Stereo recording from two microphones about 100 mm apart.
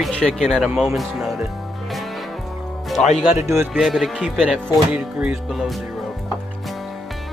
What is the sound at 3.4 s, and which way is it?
Speech, 30° right (ahead or behind).